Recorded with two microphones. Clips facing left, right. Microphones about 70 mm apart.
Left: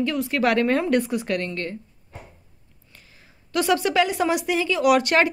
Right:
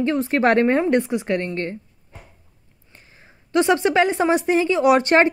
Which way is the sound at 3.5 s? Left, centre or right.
Right.